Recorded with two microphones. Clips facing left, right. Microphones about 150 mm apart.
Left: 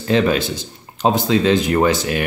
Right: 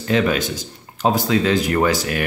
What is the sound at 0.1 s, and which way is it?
Speech, 30° left (ahead or behind).